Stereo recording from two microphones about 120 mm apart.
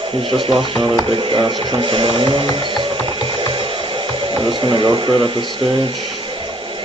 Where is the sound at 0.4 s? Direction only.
40° right (ahead or behind).